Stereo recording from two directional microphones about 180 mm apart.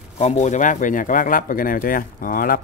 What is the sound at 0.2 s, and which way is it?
Speech, 40° left (ahead or behind).